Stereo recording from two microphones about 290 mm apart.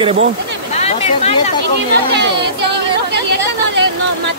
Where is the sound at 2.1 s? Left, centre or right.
Right.